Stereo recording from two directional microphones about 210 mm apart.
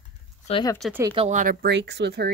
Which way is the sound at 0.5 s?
25° left (ahead or behind).